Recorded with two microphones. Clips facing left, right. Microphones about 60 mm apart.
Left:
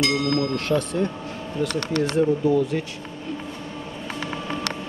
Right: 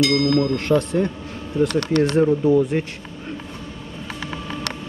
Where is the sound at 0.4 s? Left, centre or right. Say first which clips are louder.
Right 4 dB; right.